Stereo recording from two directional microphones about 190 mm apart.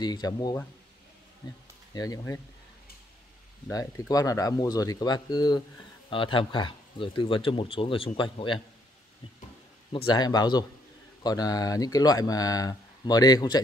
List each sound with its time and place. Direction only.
0.0 s speech: 20° left (ahead or behind)
2.0 s speech: 15° left (ahead or behind)
3.7 s speech: 20° left (ahead or behind)
9.9 s speech: 25° left (ahead or behind)